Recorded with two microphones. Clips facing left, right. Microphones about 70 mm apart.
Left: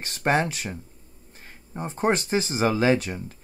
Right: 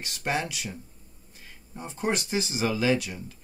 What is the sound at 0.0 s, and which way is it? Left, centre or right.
Speech, left.